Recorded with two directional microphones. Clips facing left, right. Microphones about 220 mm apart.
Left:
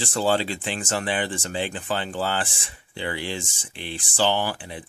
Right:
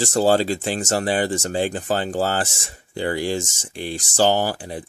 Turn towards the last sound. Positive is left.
turn(degrees=-40)  # may be behind; listen again after turning